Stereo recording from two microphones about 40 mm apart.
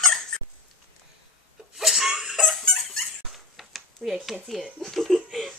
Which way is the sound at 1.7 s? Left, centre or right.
Centre.